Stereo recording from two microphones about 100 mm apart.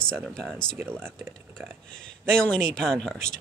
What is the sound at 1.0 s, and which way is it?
Speech, 25° right (ahead or behind).